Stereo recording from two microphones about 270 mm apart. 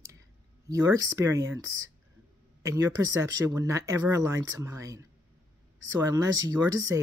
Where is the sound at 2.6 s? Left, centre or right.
Centre.